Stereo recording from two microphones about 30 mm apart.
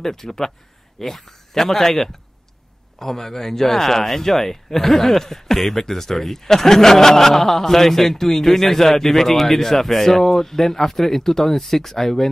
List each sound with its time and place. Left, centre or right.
0.0 s speech: centre